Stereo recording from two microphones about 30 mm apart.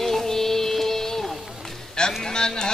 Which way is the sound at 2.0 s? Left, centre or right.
Left.